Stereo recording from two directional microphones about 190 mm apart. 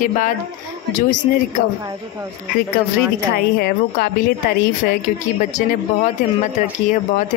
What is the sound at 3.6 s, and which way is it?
A woman's voice, 50° left (ahead or behind).